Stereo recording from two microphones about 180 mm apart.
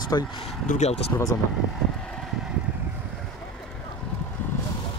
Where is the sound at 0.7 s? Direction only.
40° left (ahead or behind).